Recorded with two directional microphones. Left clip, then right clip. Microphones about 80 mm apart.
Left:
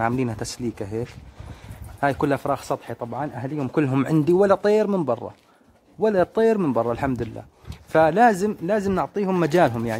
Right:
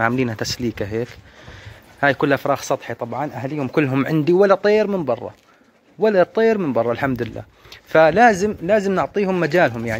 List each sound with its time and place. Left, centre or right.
0.0 s speech: centre
2.0 s speech: centre
3.5 s speech: centre; by 5.2 s left
5.9 s speech: centre
9.3 s speech: left